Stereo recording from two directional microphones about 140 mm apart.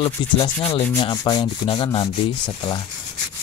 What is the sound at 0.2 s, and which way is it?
Speech, 35° left (ahead or behind).